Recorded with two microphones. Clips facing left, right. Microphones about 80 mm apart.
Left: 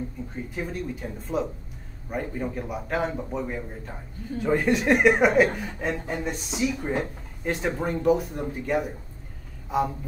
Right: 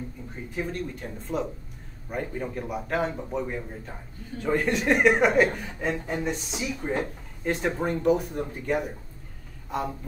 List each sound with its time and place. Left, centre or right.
0.6 s speech: centre